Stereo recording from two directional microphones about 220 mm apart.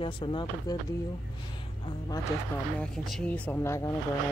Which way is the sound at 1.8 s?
20° left (ahead or behind).